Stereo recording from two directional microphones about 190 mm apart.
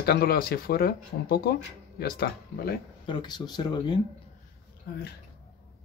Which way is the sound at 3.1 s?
25° left (ahead or behind).